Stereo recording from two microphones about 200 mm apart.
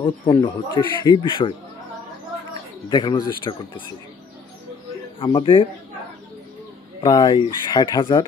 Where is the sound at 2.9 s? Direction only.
20° left (ahead or behind).